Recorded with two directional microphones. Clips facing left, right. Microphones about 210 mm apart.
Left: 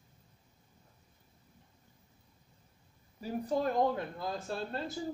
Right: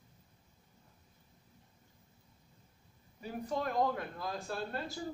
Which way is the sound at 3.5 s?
30° left (ahead or behind).